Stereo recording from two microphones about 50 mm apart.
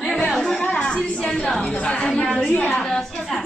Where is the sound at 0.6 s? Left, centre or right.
Left.